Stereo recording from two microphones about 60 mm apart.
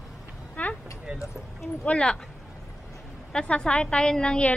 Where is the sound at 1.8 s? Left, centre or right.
Centre.